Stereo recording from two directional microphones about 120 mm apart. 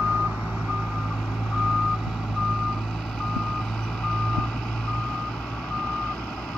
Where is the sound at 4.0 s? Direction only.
5° left (ahead or behind).